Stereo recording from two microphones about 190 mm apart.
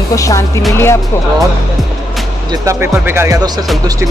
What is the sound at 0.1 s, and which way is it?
Speech, 15° left (ahead or behind).